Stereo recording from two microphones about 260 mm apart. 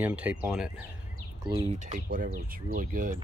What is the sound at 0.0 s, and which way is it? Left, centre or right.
Speech, centre.